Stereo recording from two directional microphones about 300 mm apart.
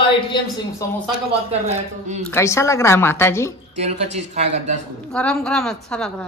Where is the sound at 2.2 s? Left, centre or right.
Centre.